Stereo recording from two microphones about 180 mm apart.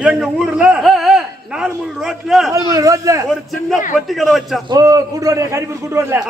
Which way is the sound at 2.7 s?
20° right (ahead or behind).